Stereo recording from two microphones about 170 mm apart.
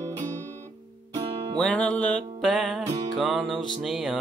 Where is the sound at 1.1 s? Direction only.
25° right (ahead or behind).